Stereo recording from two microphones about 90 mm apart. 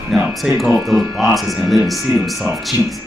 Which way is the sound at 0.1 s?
Centre (ahead or behind).